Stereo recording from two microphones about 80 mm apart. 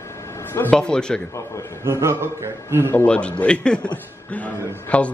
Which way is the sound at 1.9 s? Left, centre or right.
Right.